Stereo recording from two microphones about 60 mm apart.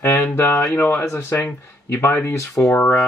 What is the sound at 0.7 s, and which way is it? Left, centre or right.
Speech, left.